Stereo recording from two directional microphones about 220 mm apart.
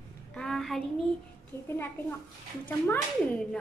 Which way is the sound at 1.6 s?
10° left (ahead or behind).